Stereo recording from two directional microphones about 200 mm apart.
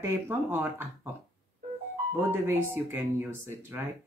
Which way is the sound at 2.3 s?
15° right (ahead or behind).